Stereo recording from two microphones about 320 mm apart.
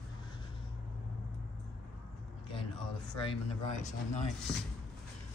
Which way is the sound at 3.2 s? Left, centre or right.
Centre.